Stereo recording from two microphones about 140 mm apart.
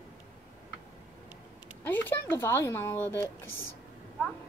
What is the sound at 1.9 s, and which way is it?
Speech, 15° left (ahead or behind).